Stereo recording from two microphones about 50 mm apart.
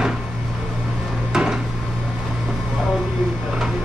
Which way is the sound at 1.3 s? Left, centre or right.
Centre.